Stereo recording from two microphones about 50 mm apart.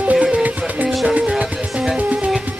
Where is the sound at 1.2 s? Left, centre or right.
Centre.